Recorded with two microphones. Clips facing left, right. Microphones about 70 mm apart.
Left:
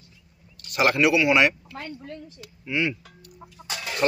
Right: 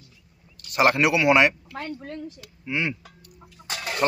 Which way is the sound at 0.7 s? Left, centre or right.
Right.